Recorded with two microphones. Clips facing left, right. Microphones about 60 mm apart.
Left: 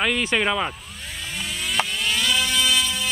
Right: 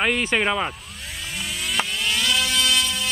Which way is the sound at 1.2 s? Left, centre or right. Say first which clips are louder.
Even; centre.